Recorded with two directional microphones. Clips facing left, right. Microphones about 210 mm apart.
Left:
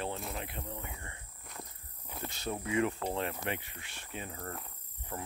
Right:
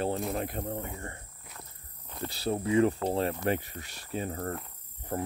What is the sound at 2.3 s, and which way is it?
Speech, 35° right (ahead or behind).